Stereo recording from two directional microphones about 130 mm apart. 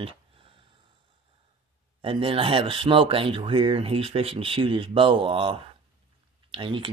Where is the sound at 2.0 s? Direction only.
45° right (ahead or behind).